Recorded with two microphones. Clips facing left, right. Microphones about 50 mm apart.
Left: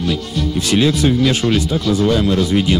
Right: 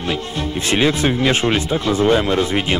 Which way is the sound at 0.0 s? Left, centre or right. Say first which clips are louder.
Left 2 dB; right.